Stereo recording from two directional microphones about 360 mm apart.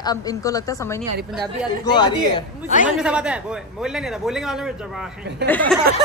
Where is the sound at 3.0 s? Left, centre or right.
Centre.